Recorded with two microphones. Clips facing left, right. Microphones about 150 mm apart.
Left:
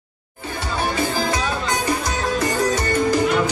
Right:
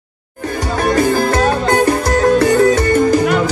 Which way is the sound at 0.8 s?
60° right (ahead or behind).